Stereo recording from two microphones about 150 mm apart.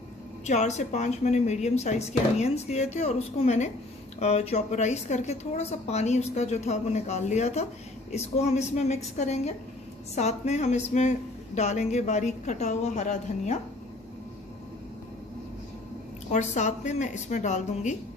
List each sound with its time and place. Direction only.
0.5 s a woman's voice: 50° left (ahead or behind)
16.3 s a woman's voice: 50° left (ahead or behind)